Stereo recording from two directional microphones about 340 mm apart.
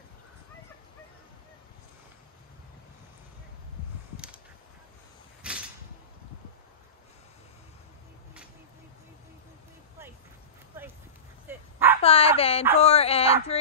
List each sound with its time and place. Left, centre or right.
11.4 s dog: centre
12.0 s speech: centre